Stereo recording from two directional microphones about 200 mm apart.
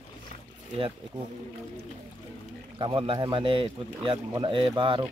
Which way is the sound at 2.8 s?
25° right (ahead or behind).